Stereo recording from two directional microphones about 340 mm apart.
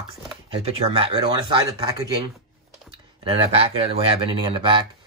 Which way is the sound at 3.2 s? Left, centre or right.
Centre.